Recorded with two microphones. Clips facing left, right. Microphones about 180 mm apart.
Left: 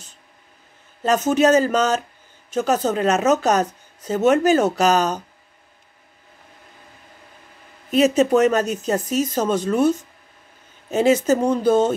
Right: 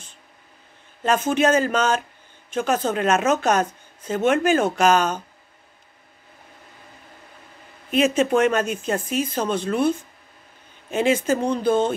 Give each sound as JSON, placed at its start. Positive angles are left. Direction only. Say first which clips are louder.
{"t": 1.0, "sound": "speech", "louder": "left 3 dB", "side_deg": 40}
{"t": 7.9, "sound": "speech", "louder": "left 3 dB", "side_deg": 40}